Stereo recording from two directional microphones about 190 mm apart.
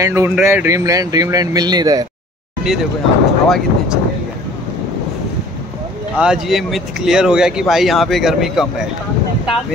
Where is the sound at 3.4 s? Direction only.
Centre (ahead or behind).